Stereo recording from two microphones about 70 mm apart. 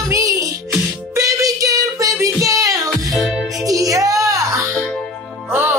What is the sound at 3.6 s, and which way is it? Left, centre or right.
Music, right.